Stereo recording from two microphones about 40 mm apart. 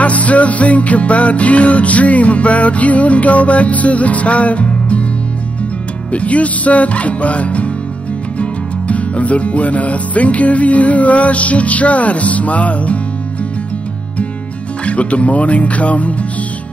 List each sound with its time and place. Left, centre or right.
0.0 s music: left
6.1 s music: left
14.9 s music: left